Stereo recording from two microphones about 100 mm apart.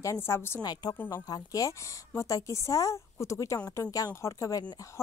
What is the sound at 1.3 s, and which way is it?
A woman's voice, 35° left (ahead or behind).